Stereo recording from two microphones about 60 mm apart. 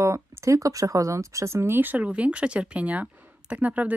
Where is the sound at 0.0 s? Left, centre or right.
Right.